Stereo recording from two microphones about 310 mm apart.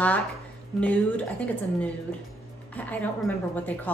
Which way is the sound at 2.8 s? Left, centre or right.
Centre.